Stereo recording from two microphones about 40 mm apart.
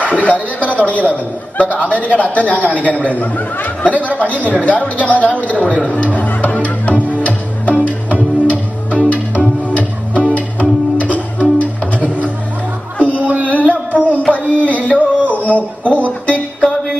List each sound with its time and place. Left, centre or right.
0.0 s a man's voice: left
5.9 s music: left
13.2 s music: right
13.5 s carnatic music: left
14.3 s a sound: left